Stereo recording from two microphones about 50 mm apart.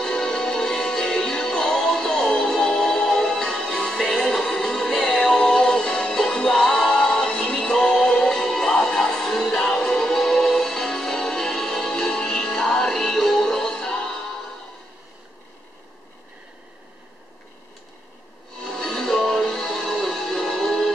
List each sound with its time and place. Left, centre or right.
0.0 s music: centre
18.6 s music: centre